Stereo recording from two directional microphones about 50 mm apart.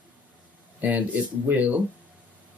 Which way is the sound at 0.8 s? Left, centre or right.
Right.